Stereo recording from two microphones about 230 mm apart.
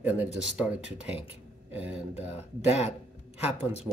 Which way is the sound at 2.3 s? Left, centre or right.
Left.